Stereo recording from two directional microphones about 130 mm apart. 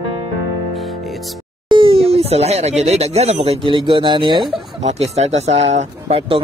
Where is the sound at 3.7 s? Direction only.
40° right (ahead or behind).